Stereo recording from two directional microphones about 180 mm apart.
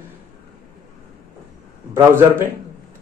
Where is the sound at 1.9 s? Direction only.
10° right (ahead or behind).